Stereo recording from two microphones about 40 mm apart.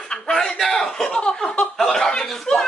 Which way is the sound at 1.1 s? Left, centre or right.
Left.